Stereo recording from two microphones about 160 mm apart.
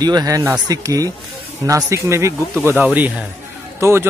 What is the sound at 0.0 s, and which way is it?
Speech, 25° right (ahead or behind).